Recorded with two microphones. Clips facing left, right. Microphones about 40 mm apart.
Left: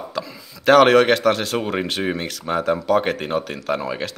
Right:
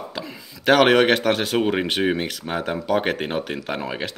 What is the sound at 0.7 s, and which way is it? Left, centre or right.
A man's voice, centre.